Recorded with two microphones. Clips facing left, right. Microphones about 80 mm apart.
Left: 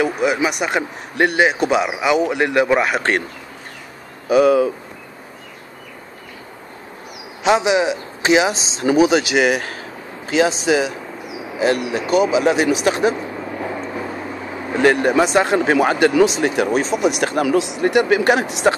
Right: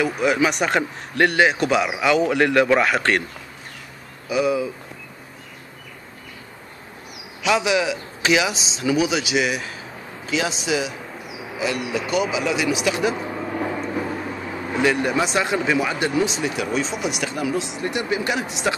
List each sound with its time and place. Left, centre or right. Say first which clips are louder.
0.0 s speech: left 2 dB; centre
1.1 s a man's voice: left 1 dB; centre
4.3 s speech: left 8 dB; left
7.4 s speech: left 4 dB; left
14.8 s speech: left 6 dB; left